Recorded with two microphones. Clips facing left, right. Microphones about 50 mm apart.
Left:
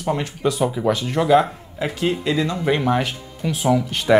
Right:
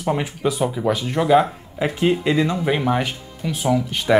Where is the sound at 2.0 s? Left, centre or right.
Centre.